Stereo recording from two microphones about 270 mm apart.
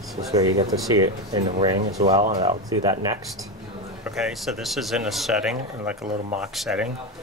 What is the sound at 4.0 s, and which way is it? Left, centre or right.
Speech, centre.